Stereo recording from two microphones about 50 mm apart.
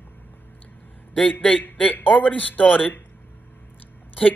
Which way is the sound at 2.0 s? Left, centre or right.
Left.